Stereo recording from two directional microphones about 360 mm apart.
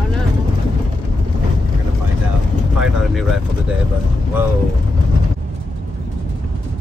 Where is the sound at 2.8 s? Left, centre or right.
Centre.